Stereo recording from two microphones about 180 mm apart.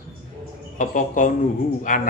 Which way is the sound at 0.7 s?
45° left (ahead or behind).